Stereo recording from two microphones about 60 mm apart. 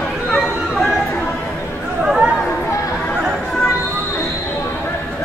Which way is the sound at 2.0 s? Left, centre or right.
Centre.